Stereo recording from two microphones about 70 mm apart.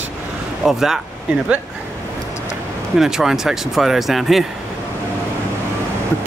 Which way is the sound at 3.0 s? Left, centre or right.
Centre.